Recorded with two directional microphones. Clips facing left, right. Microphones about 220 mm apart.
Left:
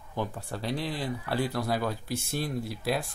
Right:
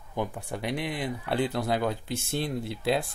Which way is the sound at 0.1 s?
15° right (ahead or behind).